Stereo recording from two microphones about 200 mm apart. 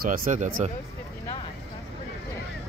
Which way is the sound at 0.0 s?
45° right (ahead or behind).